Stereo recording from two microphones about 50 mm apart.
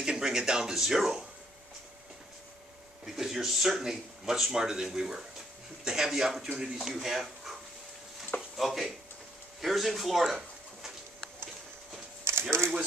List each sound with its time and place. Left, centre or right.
0.0 s speech: centre
3.2 s speech: centre
12.3 s a sound: right